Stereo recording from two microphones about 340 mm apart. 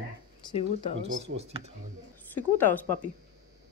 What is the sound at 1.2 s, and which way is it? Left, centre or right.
Speech, centre.